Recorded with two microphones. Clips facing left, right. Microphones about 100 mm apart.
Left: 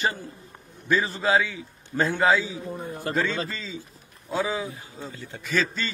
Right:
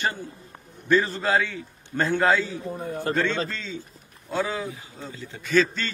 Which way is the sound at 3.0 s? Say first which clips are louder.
Right 2 dB; 30° right (ahead or behind).